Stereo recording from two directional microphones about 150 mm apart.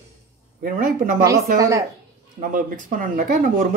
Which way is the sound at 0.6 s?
65° right (ahead or behind).